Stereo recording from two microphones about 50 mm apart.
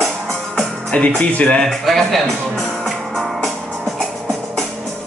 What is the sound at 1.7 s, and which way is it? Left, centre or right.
Speech, centre.